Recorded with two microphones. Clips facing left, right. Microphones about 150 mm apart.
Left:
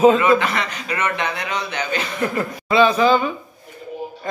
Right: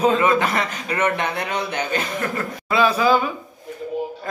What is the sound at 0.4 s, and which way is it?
A man's voice, 40° right (ahead or behind).